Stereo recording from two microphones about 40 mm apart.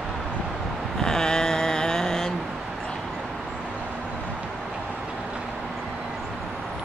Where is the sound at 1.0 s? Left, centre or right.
Centre.